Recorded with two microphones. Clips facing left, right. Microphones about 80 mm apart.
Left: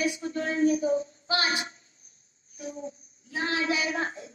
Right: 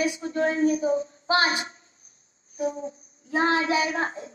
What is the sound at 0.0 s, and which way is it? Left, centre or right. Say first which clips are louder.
A woman's voice: right 5 dB; right.